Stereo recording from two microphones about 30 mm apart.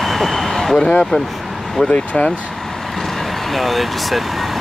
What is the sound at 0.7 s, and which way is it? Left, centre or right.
Speech, left.